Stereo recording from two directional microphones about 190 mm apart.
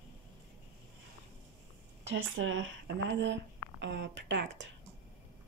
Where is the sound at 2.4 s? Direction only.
85° right; by 4.6 s 70° right (ahead or behind).